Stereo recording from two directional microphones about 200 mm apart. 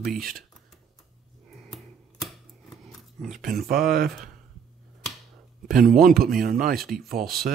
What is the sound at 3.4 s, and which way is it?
Speech, 45° right (ahead or behind).